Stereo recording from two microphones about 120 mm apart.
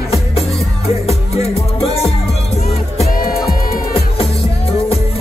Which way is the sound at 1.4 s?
55° left (ahead or behind).